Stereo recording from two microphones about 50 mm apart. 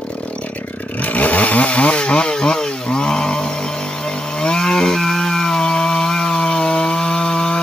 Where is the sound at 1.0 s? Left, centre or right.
Left.